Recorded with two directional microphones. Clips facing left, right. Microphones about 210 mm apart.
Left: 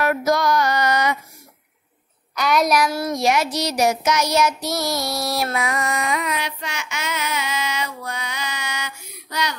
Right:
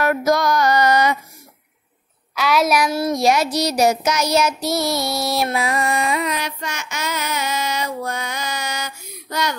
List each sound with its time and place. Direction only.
0.0 s music: 40° right (ahead or behind)
2.3 s a sound: centre (ahead or behind)
2.8 s child singing: 25° right (ahead or behind); by 9.6 s 45° right (ahead or behind)